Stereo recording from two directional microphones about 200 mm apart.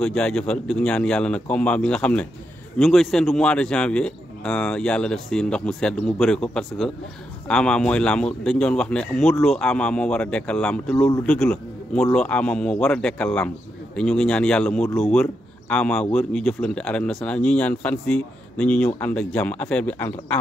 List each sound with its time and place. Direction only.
0.0 s speech: 5° left (ahead or behind)